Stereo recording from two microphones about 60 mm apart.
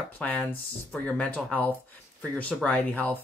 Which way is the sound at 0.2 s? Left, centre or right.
Left.